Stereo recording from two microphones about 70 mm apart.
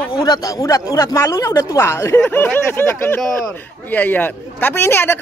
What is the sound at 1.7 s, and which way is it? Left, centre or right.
Speech, left.